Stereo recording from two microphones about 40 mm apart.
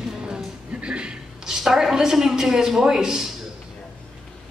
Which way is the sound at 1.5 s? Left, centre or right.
Centre.